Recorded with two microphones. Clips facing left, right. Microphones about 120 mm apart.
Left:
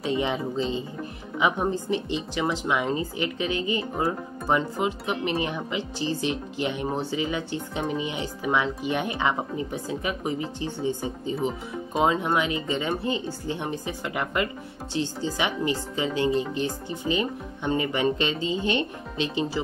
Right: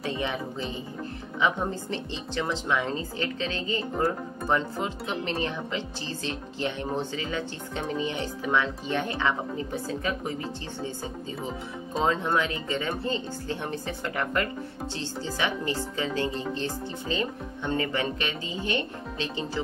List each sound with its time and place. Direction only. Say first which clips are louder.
0.0 s a woman's voice: left 4 dB; 20° left (ahead or behind)